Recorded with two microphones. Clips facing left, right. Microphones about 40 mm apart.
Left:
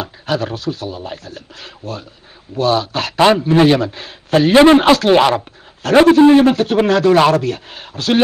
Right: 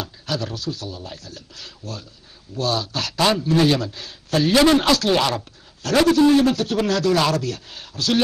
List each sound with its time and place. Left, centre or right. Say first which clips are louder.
0.0 s a man's voice: left 7 dB; left